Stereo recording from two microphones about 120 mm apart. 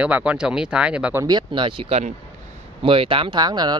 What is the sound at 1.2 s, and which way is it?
Speech, 35° right (ahead or behind).